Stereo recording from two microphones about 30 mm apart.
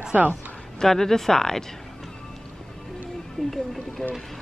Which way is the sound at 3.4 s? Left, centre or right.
Left.